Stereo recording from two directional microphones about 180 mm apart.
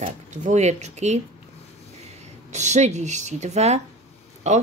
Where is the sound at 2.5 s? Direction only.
40° right (ahead or behind).